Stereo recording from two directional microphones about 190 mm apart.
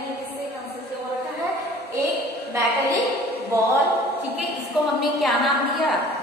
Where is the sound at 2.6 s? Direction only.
15° right (ahead or behind).